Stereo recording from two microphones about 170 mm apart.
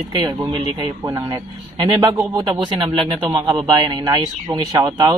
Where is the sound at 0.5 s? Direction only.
25° right (ahead or behind).